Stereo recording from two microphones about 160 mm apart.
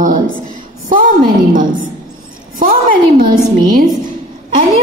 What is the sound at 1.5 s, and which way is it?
A woman's voice, 55° right (ahead or behind).